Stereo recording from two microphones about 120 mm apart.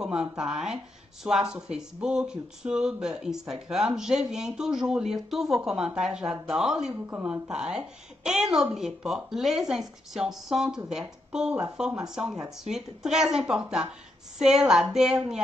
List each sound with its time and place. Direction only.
0.0 s speech: 5° right (ahead or behind)